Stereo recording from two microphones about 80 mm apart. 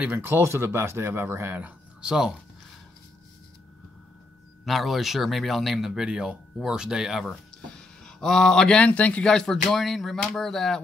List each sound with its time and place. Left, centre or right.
0.0 s speech: right
1.6 s speech: centre
4.6 s speech: centre
7.7 s speech: centre